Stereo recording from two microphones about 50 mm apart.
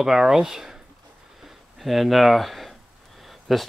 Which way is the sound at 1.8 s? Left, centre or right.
Centre.